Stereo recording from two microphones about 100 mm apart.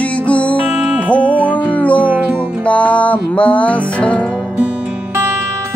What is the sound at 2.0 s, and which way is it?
Music, 20° right (ahead or behind).